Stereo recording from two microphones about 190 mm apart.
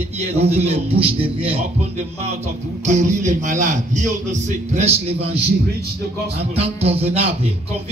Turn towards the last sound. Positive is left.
turn(degrees=-30)  # may be behind; listen again after turning